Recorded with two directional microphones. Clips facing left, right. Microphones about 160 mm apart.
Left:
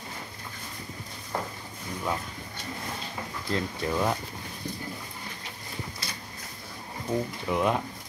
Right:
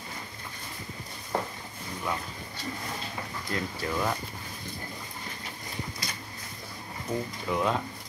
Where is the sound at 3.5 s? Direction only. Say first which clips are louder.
Left 3 dB; 15° left (ahead or behind).